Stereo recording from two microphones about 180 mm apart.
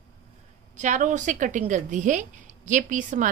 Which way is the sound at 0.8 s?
45° right (ahead or behind).